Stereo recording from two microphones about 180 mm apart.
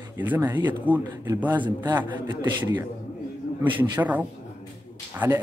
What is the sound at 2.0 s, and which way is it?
Speech, 25° right (ahead or behind).